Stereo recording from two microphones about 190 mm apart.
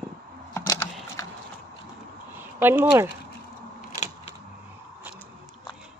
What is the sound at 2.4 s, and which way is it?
Speech, 10° right (ahead or behind).